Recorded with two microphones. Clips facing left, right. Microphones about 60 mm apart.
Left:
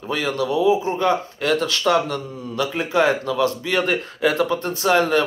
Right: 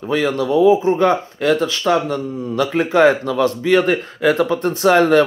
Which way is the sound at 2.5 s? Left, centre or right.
Right.